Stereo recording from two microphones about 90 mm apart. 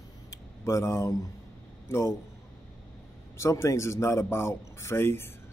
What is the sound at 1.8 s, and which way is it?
Speech, 30° left (ahead or behind).